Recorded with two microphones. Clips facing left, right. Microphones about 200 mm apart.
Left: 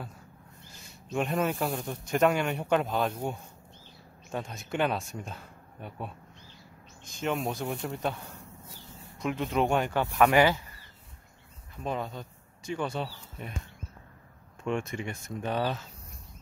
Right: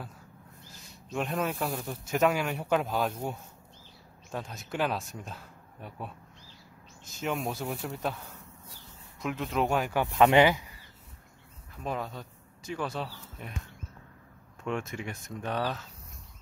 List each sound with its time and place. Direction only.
1.1 s speech: centre (ahead or behind)
9.2 s speech: centre (ahead or behind)
9.9 s speech: 20° right (ahead or behind)
11.8 s speech: centre (ahead or behind)
14.6 s speech: centre (ahead or behind)